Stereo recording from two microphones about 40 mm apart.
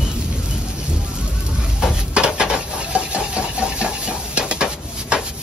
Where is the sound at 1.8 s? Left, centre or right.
Right.